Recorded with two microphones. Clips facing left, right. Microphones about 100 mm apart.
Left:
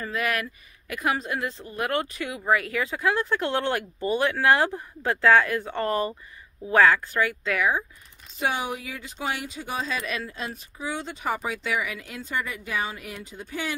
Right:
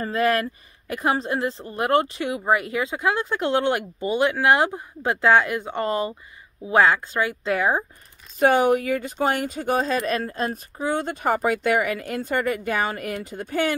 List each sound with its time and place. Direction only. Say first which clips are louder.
0.0 s a woman's voice: right 6 dB; 35° right (ahead or behind)
8.4 s speech: right 10 dB; 50° right (ahead or behind)